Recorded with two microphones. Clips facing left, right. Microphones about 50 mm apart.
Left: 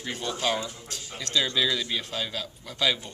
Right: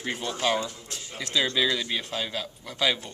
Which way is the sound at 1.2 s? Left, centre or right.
Centre.